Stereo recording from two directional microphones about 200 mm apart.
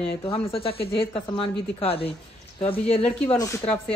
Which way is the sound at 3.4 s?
10° left (ahead or behind).